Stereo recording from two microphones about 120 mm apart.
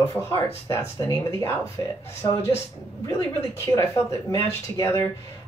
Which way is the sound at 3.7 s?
20° left (ahead or behind).